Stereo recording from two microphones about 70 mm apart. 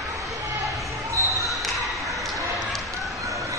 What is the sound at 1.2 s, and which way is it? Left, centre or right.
Basketball bounce, right.